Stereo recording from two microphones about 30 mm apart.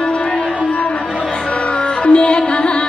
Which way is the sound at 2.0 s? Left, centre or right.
Left.